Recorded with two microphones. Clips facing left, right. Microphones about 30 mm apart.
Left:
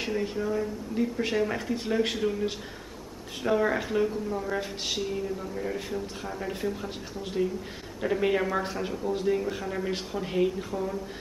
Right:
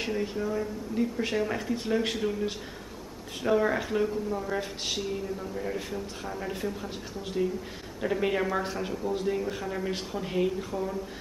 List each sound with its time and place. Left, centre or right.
0.0 s speech: centre